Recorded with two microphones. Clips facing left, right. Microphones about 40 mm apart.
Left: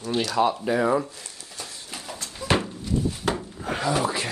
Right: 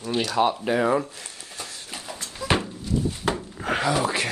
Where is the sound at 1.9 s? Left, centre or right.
Centre.